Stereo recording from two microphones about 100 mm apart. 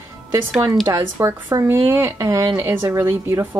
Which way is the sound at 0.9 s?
30° right (ahead or behind).